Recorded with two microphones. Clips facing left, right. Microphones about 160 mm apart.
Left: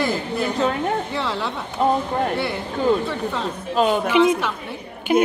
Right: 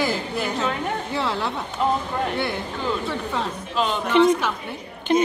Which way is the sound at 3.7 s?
45° left (ahead or behind).